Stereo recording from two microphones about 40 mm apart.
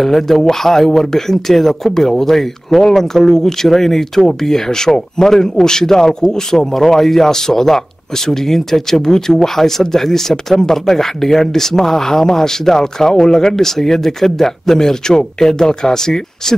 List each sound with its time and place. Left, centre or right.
0.0 s speech: centre